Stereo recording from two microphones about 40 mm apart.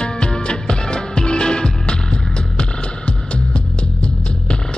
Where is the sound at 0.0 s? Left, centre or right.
Left.